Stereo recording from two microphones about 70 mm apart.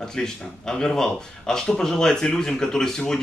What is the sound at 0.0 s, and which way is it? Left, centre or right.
Speech, centre.